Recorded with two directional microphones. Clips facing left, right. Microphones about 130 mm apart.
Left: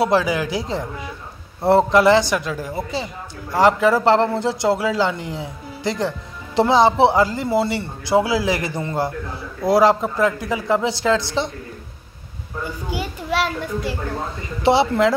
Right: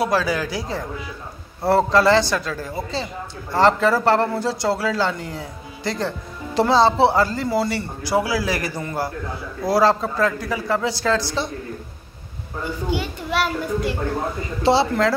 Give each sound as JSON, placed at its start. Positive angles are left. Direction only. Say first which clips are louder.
{"t": 0.0, "sound": "a man's voice", "louder": "left 3 dB", "side_deg": 20}
{"t": 13.3, "sound": "a child's voice", "louder": "even", "side_deg": 0}
{"t": 14.6, "sound": "speech", "louder": "left 2 dB", "side_deg": 20}